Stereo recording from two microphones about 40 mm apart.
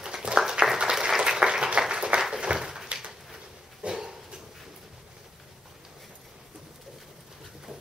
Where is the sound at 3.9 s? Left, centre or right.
Centre.